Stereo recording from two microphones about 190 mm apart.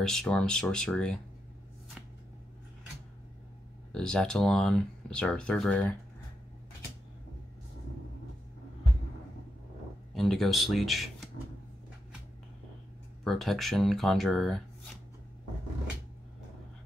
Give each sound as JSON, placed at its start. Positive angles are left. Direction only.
{"t": 0.0, "sound": "speech", "side_deg": 5}
{"t": 3.9, "sound": "speech", "side_deg": 5}
{"t": 10.1, "sound": "speech", "side_deg": 0}
{"t": 13.2, "sound": "speech", "side_deg": 0}